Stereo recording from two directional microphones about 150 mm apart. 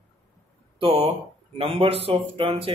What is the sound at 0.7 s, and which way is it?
Speech, 40° right (ahead or behind).